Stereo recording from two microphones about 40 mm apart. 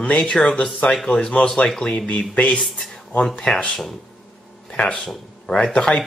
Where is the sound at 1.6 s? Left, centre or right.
Left.